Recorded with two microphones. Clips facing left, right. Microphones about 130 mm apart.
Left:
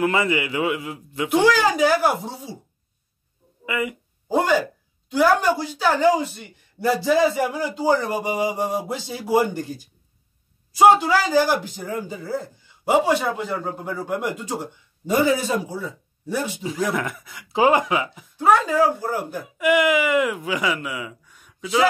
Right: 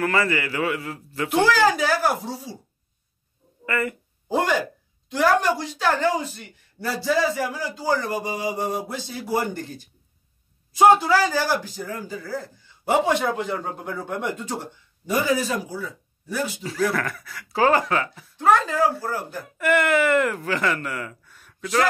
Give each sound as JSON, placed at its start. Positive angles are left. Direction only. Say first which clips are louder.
{"t": 0.0, "sound": "a man's voice", "louder": "left 2 dB", "side_deg": 20}
{"t": 3.6, "sound": "speech", "louder": "even", "side_deg": 15}
{"t": 4.3, "sound": "a man's voice", "louder": "left 3 dB", "side_deg": 5}
{"t": 12.8, "sound": "a man's voice", "louder": "left 2 dB", "side_deg": 10}
{"t": 15.0, "sound": "a man's voice", "louder": "left 3 dB", "side_deg": 25}